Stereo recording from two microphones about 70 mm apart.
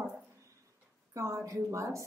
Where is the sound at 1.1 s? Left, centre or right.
Right.